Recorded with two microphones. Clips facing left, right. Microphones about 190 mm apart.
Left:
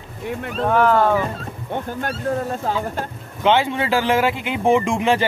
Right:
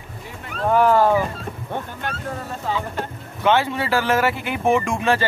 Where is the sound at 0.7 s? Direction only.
10° right (ahead or behind).